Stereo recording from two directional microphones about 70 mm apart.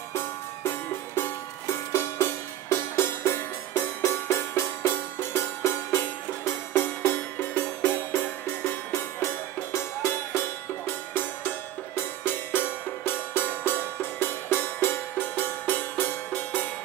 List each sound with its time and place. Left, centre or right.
0.1 s music: left
7.1 s music: left